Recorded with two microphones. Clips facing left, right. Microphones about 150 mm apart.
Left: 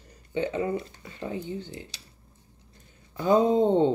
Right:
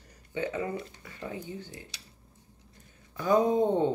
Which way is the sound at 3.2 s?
25° left (ahead or behind).